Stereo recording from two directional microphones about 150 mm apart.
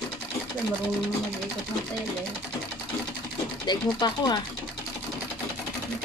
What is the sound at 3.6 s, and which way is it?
Speech, 30° left (ahead or behind).